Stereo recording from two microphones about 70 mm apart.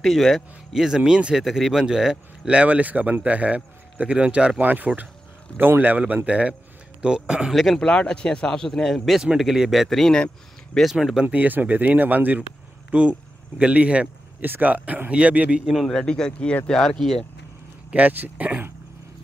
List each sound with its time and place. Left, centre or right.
0.0 s speech: centre
7.5 s a man's voice: centre
7.8 s a man's voice: centre
11.2 s speech: right
15.6 s a man's voice: centre
15.9 s speech: centre
17.9 s speech: right